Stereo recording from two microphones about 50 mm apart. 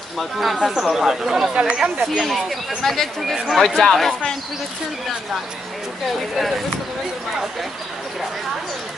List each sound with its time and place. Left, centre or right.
0.2 s speech: centre
1.5 s speech: right
2.8 s speech: centre
6.3 s speech: centre